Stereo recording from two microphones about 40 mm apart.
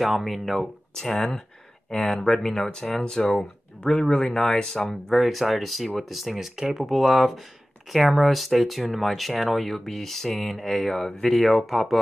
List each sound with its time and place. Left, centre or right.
0.0 s speech: centre
3.3 s speech: left
4.3 s speech: centre
4.6 s speech: centre
5.1 s speech: centre